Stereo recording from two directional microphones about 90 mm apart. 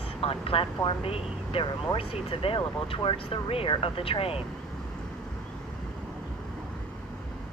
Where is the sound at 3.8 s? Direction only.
90° left.